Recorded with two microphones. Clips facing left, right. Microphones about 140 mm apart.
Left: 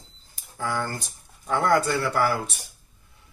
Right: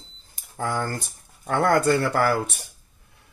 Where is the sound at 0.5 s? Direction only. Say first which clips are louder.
Right 2 dB; 60° right (ahead or behind).